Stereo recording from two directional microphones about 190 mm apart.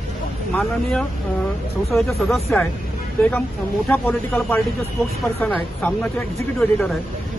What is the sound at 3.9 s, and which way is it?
Speech, 5° left (ahead or behind).